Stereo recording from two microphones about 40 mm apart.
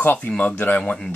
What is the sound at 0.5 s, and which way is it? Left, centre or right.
Speech, left.